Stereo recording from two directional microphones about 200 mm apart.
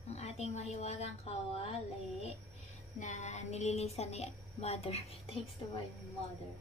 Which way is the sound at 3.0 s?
35° left (ahead or behind).